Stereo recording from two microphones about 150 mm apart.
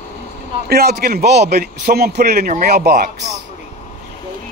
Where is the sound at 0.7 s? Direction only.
90° right.